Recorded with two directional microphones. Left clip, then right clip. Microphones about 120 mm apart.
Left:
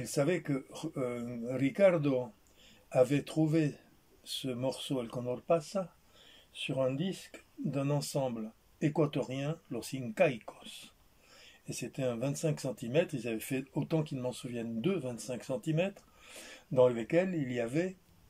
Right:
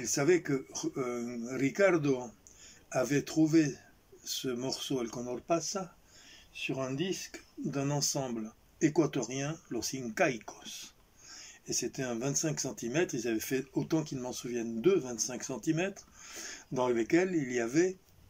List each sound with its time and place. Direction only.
0.0 s speech: 30° left (ahead or behind)